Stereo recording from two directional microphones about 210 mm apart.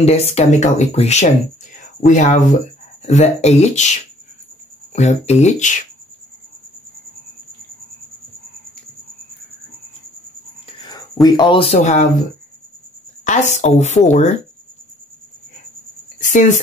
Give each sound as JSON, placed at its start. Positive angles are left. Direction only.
{"t": 0.0, "sound": "speech", "side_deg": 30}
{"t": 10.8, "sound": "a sound", "side_deg": 20}
{"t": 11.2, "sound": "speech", "side_deg": 20}
{"t": 13.2, "sound": "speech", "side_deg": 35}
{"t": 16.2, "sound": "a woman's voice", "side_deg": 35}